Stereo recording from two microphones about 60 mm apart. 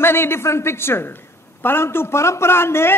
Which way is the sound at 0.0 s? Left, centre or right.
Left.